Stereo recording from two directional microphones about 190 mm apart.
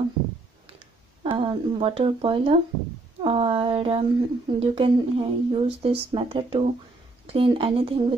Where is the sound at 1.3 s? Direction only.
30° right (ahead or behind).